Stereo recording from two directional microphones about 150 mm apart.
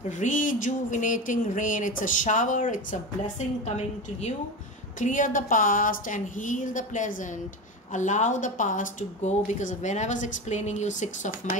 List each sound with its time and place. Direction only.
0.2 s speech: 60° left (ahead or behind)
5.0 s speech: 60° left (ahead or behind)